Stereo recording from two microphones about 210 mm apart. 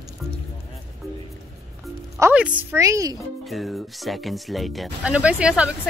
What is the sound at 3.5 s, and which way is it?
Speech, centre (ahead or behind).